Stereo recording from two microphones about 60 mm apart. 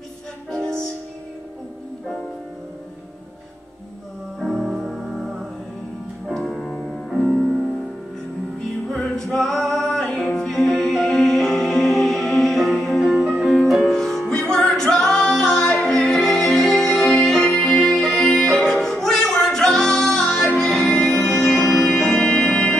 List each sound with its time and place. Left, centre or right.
0.5 s music: centre
4.4 s music: centre
6.3 s music: centre
9.1 s music: centre